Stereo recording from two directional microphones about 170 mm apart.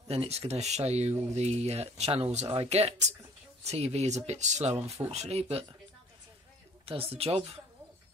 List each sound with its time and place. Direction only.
0.1 s speech: 35° right (ahead or behind)
6.9 s speech: 35° right (ahead or behind)